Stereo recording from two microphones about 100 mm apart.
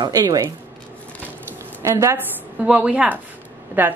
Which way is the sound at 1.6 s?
25° right (ahead or behind).